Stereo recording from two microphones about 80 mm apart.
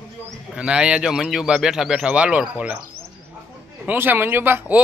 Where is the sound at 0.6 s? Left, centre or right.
Centre.